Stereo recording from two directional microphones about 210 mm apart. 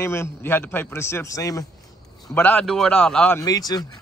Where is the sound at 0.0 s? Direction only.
10° left (ahead or behind).